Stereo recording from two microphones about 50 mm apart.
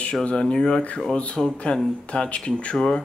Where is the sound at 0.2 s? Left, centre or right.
Centre.